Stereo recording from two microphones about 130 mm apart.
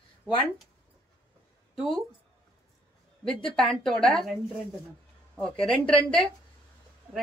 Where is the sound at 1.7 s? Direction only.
Centre (ahead or behind).